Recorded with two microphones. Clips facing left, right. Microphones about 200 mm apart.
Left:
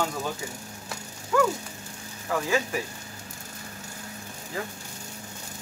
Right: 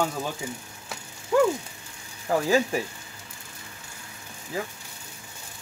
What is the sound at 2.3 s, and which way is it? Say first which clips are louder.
Frying: right 4 dB; 35° right (ahead or behind).